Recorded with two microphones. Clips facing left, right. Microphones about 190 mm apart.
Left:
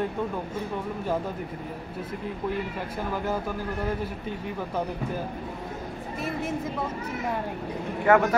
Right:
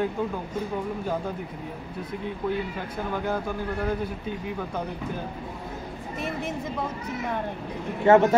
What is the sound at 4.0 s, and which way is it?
Speech, centre (ahead or behind).